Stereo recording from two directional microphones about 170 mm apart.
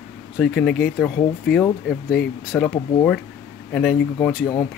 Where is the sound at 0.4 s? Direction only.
5° left (ahead or behind).